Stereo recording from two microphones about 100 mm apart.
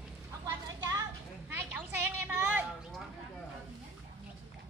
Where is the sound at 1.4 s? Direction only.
20° right (ahead or behind).